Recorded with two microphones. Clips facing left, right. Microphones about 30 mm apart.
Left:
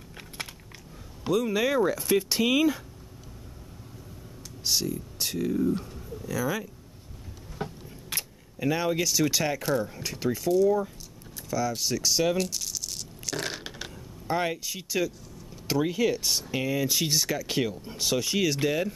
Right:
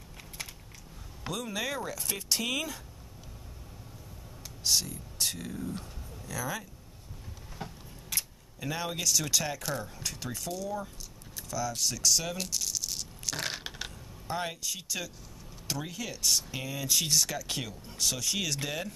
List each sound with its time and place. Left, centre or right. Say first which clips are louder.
1.2 s speech: left 9 dB; centre
4.6 s speech: left 2 dB; centre
7.6 s a sound: left 7 dB; left
8.1 s speech: left 2 dB; centre
12.4 s coin: left 5 dB; centre
14.2 s speech: left 6 dB; centre